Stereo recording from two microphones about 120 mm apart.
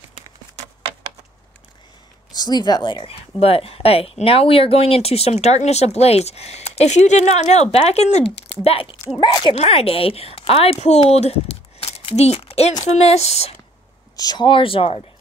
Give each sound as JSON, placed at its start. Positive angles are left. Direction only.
{"t": 2.3, "sound": "speech", "side_deg": 35}
{"t": 3.1, "sound": "speech", "side_deg": 55}
{"t": 8.6, "sound": "speech", "side_deg": 50}
{"t": 9.2, "sound": "speech", "side_deg": 35}
{"t": 9.5, "sound": "speech", "side_deg": 50}
{"t": 14.1, "sound": "speech", "side_deg": 35}